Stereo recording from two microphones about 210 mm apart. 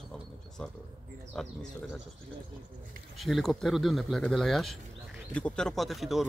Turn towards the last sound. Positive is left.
turn(degrees=0)  # may be behind; listen again after turning